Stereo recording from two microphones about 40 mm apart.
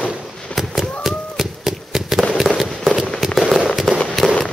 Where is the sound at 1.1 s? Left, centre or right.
Centre.